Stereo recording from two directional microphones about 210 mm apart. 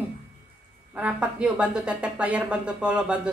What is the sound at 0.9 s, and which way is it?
Speech, 5° right (ahead or behind).